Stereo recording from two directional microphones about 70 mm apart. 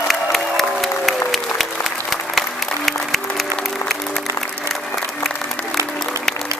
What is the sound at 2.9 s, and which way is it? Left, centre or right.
Music, centre.